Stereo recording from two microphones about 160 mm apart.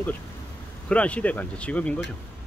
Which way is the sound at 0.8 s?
10° left (ahead or behind).